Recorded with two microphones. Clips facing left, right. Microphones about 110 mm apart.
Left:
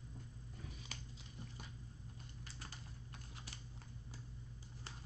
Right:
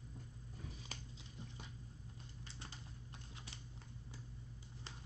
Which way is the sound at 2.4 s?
25° right (ahead or behind).